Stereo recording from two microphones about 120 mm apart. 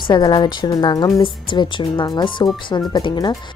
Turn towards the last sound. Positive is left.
turn(degrees=35)  # may be behind; listen again after turning